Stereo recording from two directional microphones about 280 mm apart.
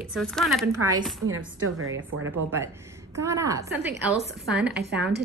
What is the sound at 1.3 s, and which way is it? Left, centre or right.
Speech, right.